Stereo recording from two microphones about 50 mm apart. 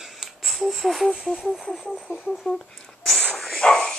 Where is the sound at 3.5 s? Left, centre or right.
Centre.